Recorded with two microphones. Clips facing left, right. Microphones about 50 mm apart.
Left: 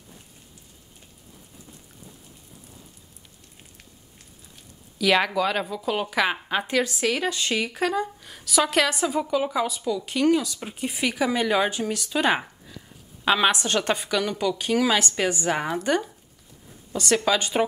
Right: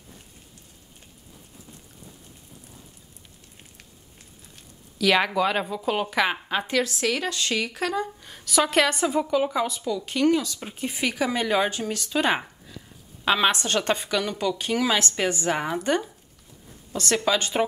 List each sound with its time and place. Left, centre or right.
4.9 s a woman's voice: centre